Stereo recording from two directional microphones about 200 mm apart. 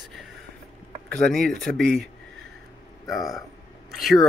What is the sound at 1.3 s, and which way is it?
Speech, centre (ahead or behind).